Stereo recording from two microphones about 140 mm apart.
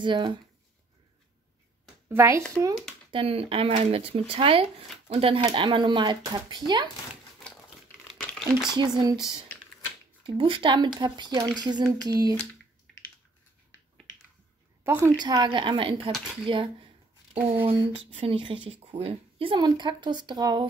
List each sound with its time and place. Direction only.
0.0 s speech: 35° right (ahead or behind)
2.0 s a child's voice: 20° right (ahead or behind)
3.1 s speech: 40° right (ahead or behind)
5.4 s speech: 30° right (ahead or behind)
8.2 s crumpling: centre (ahead or behind)
8.7 s speech: 30° right (ahead or behind)
12.0 s a sound: 25° right (ahead or behind)
14.8 s a woman's voice: 20° right (ahead or behind)
15.1 s speech: 30° right (ahead or behind)
17.4 s speech: 15° right (ahead or behind)
18.1 s speech: 40° right (ahead or behind)